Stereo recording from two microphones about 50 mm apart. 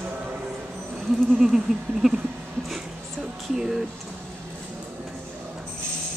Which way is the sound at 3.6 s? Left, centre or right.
Centre.